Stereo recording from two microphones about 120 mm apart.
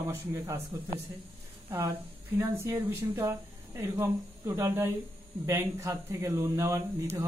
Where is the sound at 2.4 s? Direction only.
20° right (ahead or behind).